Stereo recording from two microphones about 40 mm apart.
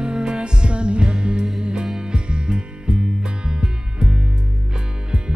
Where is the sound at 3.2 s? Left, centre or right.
Centre.